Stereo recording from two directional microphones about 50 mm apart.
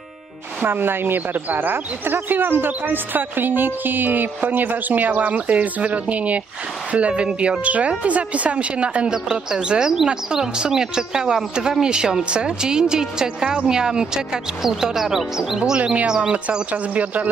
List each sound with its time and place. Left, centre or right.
0.7 s speech: right; by 15.8 s centre
15.8 s speech: right